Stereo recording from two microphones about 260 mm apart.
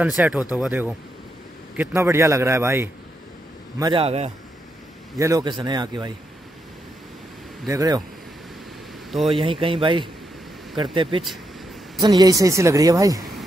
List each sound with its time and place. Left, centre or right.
0.0 s speech: centre
3.8 s speech: right
7.6 s speech: centre
9.1 s speech: centre
9.4 s speech: centre